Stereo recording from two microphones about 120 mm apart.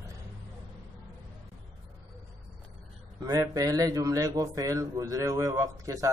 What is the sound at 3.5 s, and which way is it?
A man's voice, 30° right (ahead or behind).